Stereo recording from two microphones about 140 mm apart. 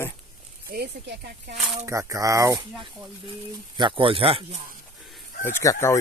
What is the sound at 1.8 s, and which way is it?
Speech, 20° right (ahead or behind).